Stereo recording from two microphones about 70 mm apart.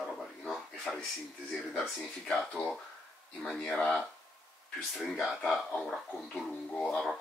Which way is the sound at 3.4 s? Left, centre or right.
Centre.